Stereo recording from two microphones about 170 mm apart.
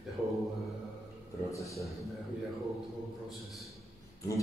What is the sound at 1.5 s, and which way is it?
Speech, 20° left (ahead or behind).